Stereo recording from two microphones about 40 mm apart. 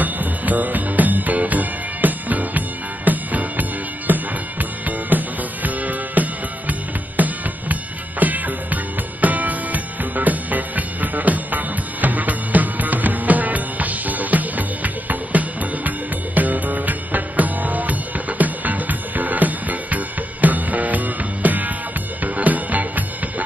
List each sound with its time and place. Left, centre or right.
0.0 s music: right